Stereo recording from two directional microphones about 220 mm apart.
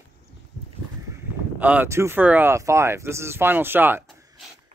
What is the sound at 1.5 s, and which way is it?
Speech, 5° right (ahead or behind).